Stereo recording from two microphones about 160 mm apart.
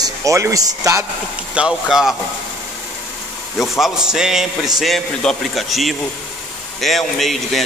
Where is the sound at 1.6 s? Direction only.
Centre (ahead or behind).